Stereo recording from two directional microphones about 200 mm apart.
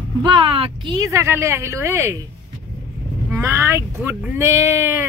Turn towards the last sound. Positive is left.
turn(degrees=-10)  # may be behind; listen again after turning